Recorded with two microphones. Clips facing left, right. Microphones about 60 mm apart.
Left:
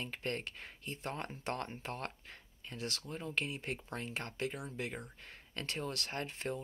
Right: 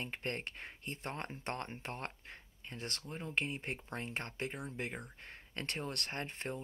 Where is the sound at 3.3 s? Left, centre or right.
Right.